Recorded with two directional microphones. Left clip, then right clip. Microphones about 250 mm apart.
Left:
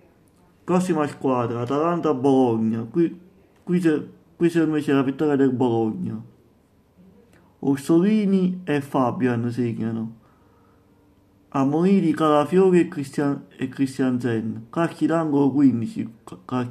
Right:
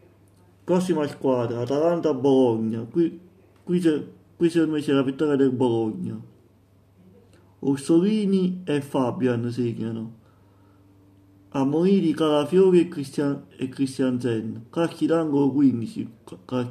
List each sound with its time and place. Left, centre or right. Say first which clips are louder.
0.7 s speech: left 3 dB; centre
7.6 s speech: left 1 dB; centre
11.5 s speech: left 1 dB; centre